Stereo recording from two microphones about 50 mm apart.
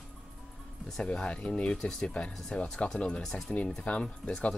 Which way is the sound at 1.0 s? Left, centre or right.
Centre.